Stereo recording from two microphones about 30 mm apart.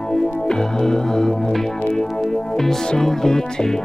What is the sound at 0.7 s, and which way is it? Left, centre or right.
Music, centre.